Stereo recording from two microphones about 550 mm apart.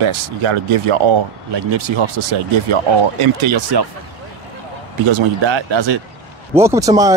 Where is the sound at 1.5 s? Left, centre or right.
Right.